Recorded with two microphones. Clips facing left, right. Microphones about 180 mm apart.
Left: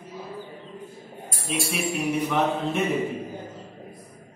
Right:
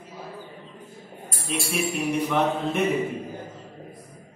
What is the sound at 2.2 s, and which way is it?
Mantra, 5° left (ahead or behind).